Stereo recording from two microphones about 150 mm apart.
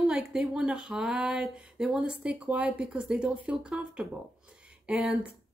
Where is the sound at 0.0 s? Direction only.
5° right (ahead or behind).